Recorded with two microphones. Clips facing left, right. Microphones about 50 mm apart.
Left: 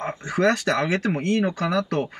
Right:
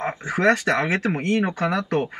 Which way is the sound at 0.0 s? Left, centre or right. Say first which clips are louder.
Right 1 dB; right.